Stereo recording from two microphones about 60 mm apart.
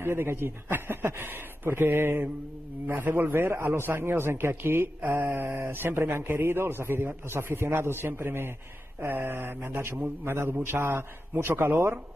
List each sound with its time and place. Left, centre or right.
0.0 s a man's voice: right